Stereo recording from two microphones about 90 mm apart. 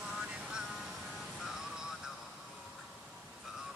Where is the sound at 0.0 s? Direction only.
10° right (ahead or behind).